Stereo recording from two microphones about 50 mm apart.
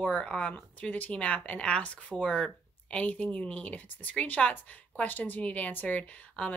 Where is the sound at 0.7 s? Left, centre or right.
Left.